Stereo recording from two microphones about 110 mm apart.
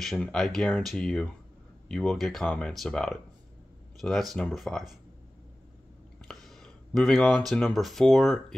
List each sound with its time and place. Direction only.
0.2 s speech: 5° left (ahead or behind)
6.2 s speech: 5° left (ahead or behind)